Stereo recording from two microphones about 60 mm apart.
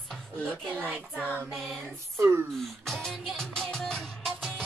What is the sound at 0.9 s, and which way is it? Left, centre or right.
Child singing, right.